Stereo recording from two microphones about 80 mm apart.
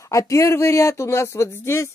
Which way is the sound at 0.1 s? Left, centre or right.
Left.